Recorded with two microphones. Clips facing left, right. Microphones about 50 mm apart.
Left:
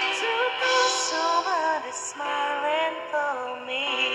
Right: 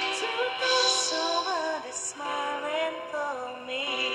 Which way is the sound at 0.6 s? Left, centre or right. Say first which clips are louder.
Left 3 dB; left.